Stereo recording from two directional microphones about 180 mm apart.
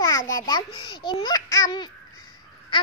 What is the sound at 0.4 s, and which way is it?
Speech, 25° left (ahead or behind).